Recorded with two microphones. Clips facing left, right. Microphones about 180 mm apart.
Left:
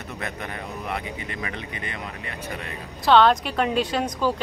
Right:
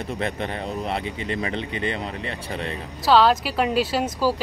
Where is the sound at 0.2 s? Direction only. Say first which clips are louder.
Right 4 dB; 25° right (ahead or behind).